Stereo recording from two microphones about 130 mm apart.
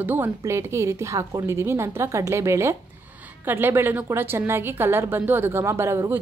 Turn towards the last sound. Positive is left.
turn(degrees=-20)  # may be behind; listen again after turning